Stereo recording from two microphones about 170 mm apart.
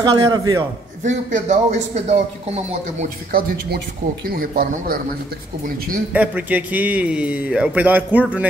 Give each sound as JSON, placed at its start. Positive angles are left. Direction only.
{"t": 0.0, "sound": "a man's voice", "side_deg": -25}
{"t": 1.0, "sound": "speech", "side_deg": -45}
{"t": 3.3, "sound": "speech", "side_deg": -65}
{"t": 6.1, "sound": "a man's voice", "side_deg": -10}